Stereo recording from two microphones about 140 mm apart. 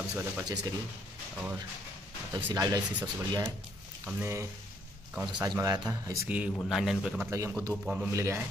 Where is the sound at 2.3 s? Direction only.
25° right (ahead or behind).